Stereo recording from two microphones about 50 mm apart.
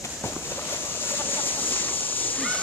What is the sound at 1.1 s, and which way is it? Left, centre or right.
Splash, left.